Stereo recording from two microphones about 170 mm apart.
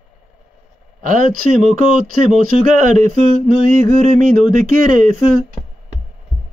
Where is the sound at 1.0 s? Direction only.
50° right (ahead or behind).